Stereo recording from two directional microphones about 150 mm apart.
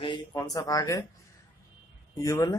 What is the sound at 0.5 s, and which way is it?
Speech, 20° left (ahead or behind).